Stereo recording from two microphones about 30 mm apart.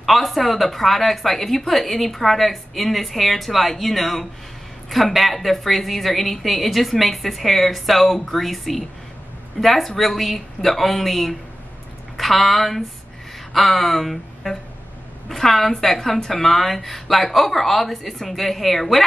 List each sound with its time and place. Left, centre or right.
0.0 s a woman's voice: centre